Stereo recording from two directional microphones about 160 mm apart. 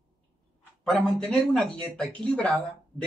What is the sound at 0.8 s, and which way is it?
Speech, 5° left (ahead or behind).